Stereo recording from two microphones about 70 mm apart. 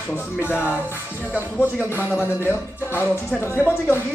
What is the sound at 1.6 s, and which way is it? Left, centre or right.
Speech, left.